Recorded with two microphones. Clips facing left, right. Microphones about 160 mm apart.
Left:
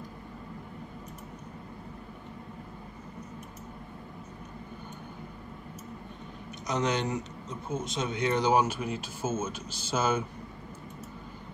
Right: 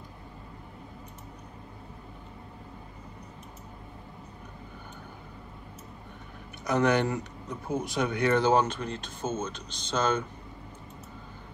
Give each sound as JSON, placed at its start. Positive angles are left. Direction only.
{"t": 6.6, "sound": "speech", "side_deg": 20}